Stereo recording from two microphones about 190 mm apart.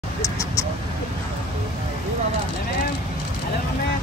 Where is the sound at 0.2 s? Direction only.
15° left (ahead or behind).